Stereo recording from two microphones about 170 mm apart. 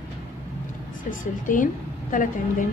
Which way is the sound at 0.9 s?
50° left (ahead or behind).